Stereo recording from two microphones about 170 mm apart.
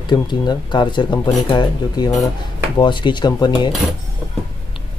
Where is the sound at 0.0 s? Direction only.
25° left (ahead or behind).